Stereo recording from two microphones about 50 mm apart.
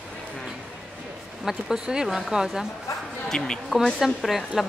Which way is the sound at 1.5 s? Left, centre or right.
Centre.